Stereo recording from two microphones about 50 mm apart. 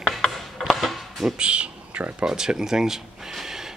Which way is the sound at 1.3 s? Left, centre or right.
Right.